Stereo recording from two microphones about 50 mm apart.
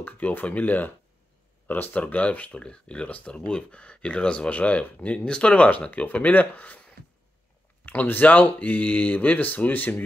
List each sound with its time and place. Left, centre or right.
0.0 s speech: left
2.0 s speech: left
7.8 s speech: left